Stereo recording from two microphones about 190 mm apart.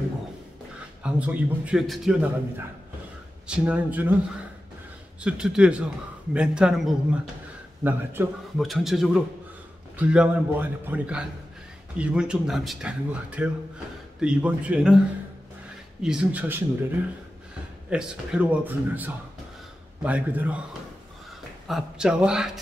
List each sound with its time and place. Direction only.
1.0 s a man's voice: 5° right (ahead or behind)
5.2 s a man's voice: 5° right (ahead or behind)
8.5 s a man's voice: centre (ahead or behind)
16.0 s a man's voice: 5° right (ahead or behind)
17.8 s a man's voice: 5° right (ahead or behind)
21.6 s a man's voice: 5° right (ahead or behind)